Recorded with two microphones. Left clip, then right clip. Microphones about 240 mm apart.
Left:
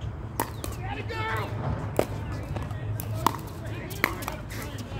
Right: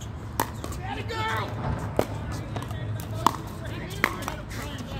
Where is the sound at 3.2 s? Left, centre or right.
Centre.